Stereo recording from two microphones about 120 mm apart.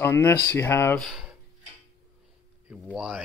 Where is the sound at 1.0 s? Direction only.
Centre (ahead or behind).